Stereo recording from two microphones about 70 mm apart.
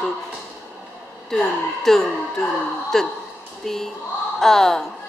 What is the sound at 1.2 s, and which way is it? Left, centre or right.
Speech, centre.